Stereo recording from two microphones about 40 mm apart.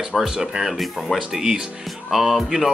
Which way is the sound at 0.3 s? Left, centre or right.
Centre.